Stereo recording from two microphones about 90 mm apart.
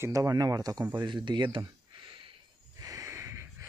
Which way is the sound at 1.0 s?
60° right (ahead or behind).